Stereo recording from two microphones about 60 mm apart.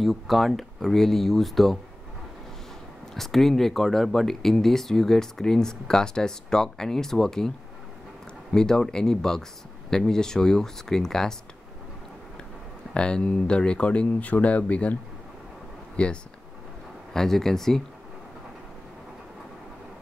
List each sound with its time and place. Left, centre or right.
0.0 s speech: centre
3.2 s speech: centre
12.9 s speech: centre
16.0 s speech: centre
17.1 s speech: centre